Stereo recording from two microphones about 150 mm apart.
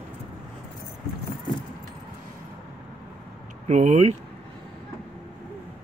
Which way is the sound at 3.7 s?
50° right (ahead or behind).